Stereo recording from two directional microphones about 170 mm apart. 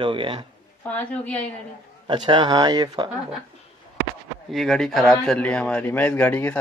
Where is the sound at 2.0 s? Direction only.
25° right (ahead or behind).